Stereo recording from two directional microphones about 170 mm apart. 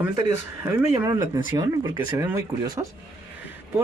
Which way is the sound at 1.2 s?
25° right (ahead or behind).